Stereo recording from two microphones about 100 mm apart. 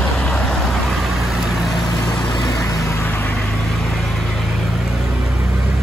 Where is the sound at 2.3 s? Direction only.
40° left (ahead or behind); by 3.3 s 20° left (ahead or behind).